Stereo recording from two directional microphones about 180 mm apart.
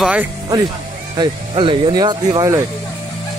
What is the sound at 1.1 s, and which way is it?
Speech, 25° right (ahead or behind).